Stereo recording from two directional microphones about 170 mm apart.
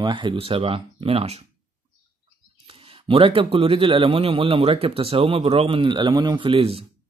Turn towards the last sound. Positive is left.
turn(degrees=-35)  # may be behind; listen again after turning